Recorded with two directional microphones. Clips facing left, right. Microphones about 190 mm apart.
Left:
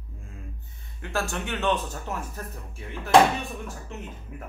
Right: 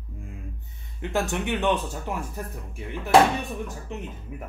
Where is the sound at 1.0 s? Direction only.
20° right (ahead or behind).